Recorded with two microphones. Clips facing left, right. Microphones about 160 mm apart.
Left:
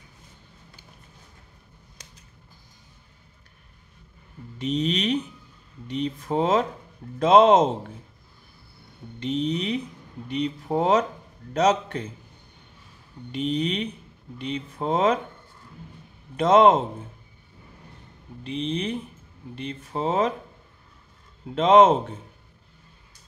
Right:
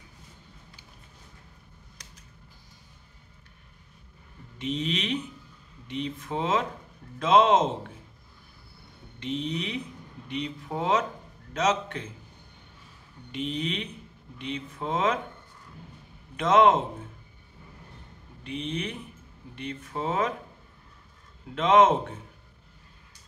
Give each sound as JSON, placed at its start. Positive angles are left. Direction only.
{"t": 4.6, "sound": "speech", "side_deg": 40}
{"t": 9.2, "sound": "speech", "side_deg": 40}
{"t": 13.3, "sound": "speech", "side_deg": 40}
{"t": 16.3, "sound": "speech", "side_deg": 35}
{"t": 18.4, "sound": "speech", "side_deg": 30}
{"t": 21.5, "sound": "speech", "side_deg": 30}